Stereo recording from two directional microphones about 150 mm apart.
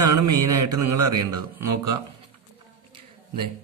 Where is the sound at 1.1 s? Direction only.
25° right (ahead or behind).